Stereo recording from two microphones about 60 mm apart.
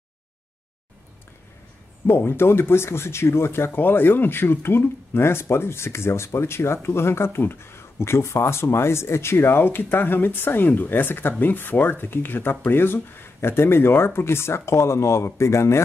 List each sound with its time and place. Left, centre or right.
2.0 s speech: left